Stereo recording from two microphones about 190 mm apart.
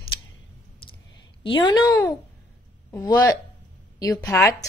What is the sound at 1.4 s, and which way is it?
A woman's voice, 20° left (ahead or behind).